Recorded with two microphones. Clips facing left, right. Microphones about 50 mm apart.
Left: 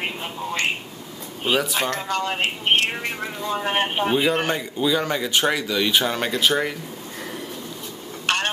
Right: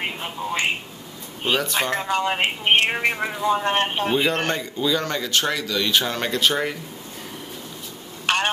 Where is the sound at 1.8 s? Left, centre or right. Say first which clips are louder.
Right 2 dB; centre; by 3.3 s right.